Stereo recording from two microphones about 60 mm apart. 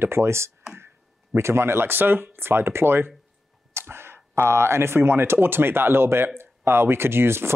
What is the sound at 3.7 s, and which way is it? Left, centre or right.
Sneeze, right.